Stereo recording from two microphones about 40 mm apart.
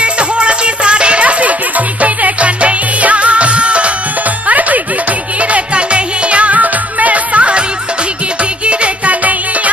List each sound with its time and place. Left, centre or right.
0.0 s music: right
8.6 s music: right